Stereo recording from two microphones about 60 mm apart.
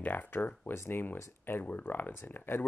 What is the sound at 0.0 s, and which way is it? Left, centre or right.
Speech, left.